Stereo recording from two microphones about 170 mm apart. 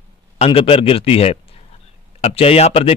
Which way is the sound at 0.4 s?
35° left (ahead or behind).